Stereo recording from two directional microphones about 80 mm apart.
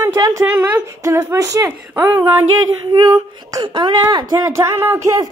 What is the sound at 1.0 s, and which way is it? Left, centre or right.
Speech, right.